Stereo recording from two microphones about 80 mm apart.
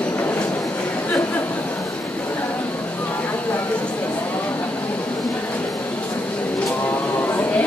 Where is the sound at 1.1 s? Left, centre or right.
Left.